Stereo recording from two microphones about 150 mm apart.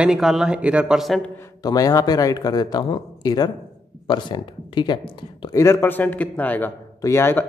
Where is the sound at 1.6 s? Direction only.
25° left (ahead or behind).